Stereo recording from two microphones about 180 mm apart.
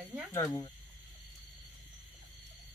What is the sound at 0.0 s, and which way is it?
Cricket, 10° right (ahead or behind).